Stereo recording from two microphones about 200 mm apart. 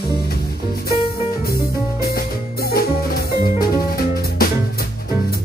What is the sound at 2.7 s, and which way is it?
Music, 45° left (ahead or behind).